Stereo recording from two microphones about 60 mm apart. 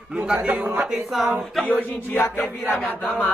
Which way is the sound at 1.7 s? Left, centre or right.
Left.